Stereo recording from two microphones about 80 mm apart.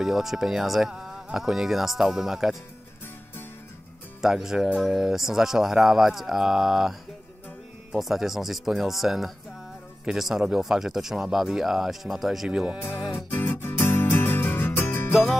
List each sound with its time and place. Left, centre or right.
0.0 s speech: centre
4.2 s speech: centre
13.1 s music: left